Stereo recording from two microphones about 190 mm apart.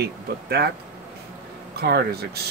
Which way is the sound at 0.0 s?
55° right (ahead or behind).